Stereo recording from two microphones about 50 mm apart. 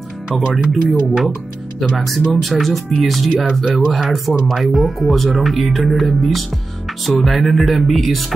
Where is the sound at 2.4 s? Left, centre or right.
Centre.